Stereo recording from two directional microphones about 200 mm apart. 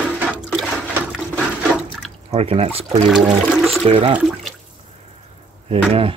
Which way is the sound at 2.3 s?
30° right (ahead or behind).